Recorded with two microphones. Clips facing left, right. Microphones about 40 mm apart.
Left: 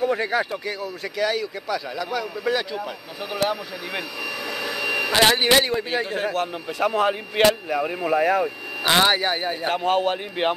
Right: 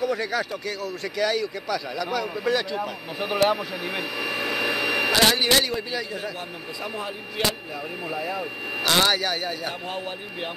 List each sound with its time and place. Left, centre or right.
0.0 s speech: left
1.0 s speech: centre
3.2 s speech: centre
4.3 s vacuum cleaner: right
5.1 s speech: left
5.9 s a man's voice: left
7.0 s a man's voice: left
8.8 s speech: left
9.8 s speech: left